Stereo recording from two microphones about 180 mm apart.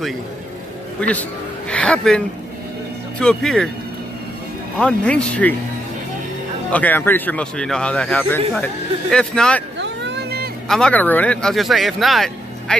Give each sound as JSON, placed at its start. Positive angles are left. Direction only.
{"t": 1.7, "sound": "speech", "side_deg": 5}
{"t": 4.7, "sound": "speech", "side_deg": 5}
{"t": 6.7, "sound": "speech", "side_deg": 10}
{"t": 9.8, "sound": "vehicle", "side_deg": -75}
{"t": 10.7, "sound": "speech", "side_deg": 5}